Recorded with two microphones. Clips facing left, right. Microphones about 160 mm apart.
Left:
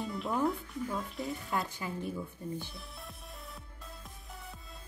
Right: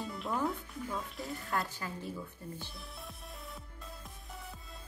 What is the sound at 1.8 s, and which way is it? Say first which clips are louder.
Speech: left 3 dB; 15° left (ahead or behind).